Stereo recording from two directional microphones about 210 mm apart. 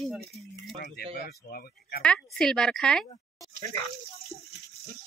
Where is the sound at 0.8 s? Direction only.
50° left (ahead or behind).